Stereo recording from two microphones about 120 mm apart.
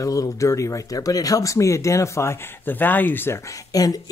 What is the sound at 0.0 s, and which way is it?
Speech, 30° left (ahead or behind).